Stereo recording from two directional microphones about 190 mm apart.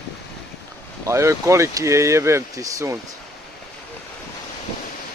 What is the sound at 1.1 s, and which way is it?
Speech, 15° right (ahead or behind).